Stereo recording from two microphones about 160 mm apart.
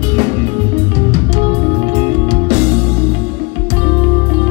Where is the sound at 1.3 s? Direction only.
35° right (ahead or behind).